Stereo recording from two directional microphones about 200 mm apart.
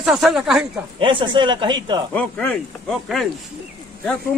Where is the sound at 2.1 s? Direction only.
5° left (ahead or behind).